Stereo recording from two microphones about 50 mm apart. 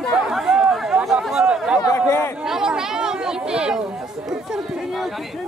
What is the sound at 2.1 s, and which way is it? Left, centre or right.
Chatter, left.